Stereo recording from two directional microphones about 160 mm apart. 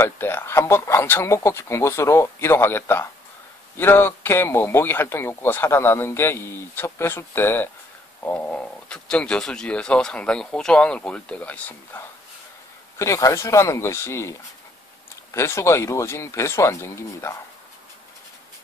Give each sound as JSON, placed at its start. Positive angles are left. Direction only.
{"t": 0.0, "sound": "a man's voice", "side_deg": 15}
{"t": 13.0, "sound": "a man's voice", "side_deg": 20}
{"t": 15.3, "sound": "a man's voice", "side_deg": 15}